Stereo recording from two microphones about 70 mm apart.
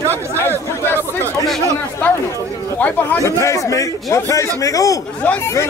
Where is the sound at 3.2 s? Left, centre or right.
Left.